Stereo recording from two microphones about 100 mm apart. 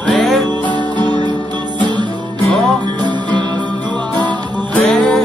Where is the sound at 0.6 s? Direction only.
50° right (ahead or behind).